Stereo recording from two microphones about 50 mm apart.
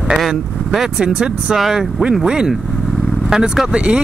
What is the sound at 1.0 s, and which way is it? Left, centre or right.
Speech, centre.